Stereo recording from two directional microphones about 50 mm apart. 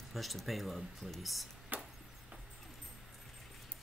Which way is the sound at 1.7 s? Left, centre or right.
Right.